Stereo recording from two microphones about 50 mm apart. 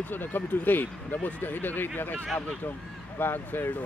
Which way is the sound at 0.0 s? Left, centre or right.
Left.